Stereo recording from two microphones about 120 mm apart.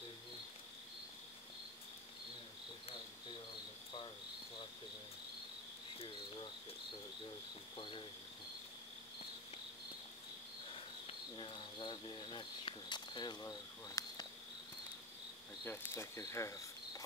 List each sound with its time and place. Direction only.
5.9 s cricket: 45° left (ahead or behind)
7.7 s cricket: 45° left (ahead or behind)
10.7 s cricket: 50° left (ahead or behind); by 14.2 s 35° left (ahead or behind)
15.6 s cricket: 20° left (ahead or behind)